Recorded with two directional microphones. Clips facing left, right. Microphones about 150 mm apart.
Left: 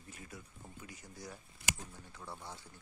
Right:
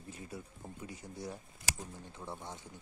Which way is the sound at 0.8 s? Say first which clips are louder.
Right 7 dB; 30° right (ahead or behind).